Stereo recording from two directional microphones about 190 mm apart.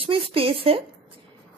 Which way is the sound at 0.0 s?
30° right (ahead or behind).